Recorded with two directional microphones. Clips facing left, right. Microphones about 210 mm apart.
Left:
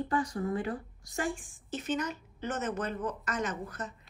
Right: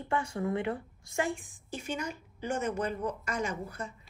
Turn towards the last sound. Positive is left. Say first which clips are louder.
# even
turn(degrees=-10)  # may be behind; listen again after turning